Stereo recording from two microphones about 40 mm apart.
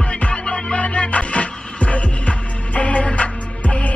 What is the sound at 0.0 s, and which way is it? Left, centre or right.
Music, left.